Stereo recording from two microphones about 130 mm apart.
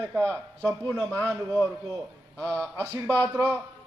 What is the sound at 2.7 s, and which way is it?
Speech, 20° right (ahead or behind).